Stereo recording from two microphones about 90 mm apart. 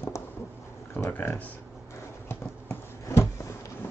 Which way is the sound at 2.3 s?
35° left (ahead or behind).